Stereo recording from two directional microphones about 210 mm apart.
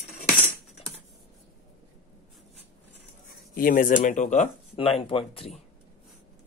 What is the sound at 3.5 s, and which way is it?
Speech, 40° left (ahead or behind).